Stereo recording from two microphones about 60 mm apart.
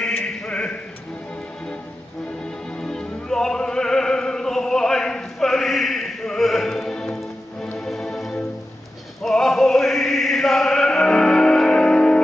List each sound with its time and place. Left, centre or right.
0.2 s a sound: centre
2.8 s music: centre
9.2 s chant: centre